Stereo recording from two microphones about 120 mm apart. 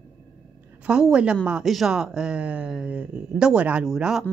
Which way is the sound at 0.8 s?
10° right (ahead or behind).